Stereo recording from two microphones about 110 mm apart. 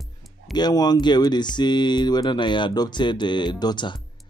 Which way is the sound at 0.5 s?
40° left (ahead or behind).